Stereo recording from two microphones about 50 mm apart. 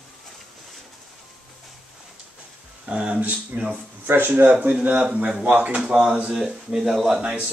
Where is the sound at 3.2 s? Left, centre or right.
Right.